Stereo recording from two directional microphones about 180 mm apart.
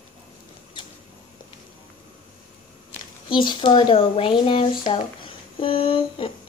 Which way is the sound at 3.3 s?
25° left (ahead or behind).